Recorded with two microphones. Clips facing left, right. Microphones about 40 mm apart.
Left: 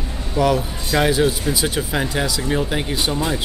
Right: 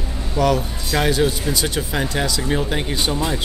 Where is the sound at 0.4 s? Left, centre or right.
Centre.